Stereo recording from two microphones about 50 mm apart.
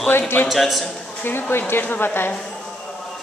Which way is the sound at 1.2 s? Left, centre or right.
Left.